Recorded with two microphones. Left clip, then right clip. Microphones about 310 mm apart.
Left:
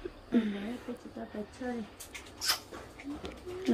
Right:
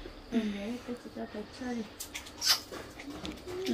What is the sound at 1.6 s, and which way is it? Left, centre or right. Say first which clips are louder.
Speech: left 1 dB; left.